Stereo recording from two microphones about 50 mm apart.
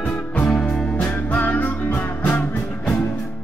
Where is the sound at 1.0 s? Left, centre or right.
Left.